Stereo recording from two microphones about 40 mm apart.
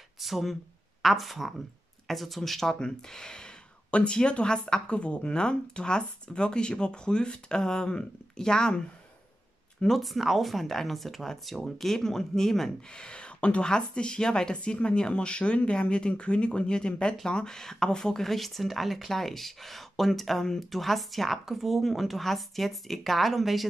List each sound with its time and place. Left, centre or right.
0.2 s speech: centre
9.9 s speech: centre
12.9 s speech: left; by 23.6 s centre